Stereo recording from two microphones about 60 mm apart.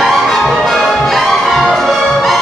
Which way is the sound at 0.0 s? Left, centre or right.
Centre.